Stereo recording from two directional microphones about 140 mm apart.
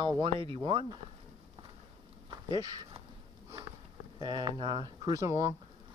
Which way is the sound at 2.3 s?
30° right (ahead or behind).